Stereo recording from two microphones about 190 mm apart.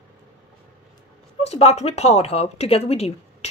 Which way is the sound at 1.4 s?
30° left (ahead or behind).